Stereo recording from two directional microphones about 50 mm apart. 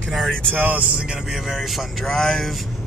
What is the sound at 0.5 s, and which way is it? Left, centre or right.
Speech, right.